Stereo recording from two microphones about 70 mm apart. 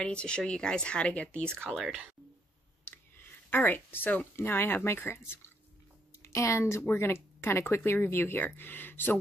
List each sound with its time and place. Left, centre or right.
0.0 s speech: centre
1.7 s speech: centre
2.8 s speech: left